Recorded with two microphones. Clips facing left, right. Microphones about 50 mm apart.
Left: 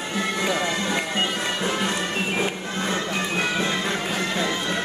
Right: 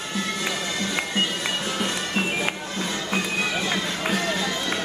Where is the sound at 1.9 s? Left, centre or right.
Left.